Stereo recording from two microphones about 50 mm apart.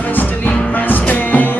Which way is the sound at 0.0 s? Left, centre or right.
Left.